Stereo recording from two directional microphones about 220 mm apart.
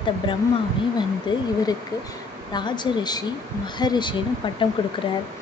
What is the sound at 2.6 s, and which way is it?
Speech, 20° left (ahead or behind).